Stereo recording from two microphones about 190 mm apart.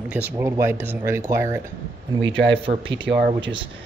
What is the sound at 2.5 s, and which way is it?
Speech, 30° right (ahead or behind).